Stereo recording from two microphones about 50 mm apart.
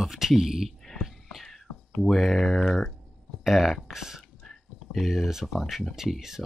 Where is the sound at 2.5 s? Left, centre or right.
Centre.